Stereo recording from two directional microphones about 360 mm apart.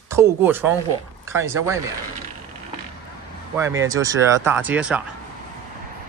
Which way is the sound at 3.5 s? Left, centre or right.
Centre.